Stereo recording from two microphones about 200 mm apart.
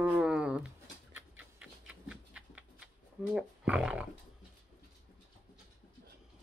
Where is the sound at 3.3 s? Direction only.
5° right (ahead or behind).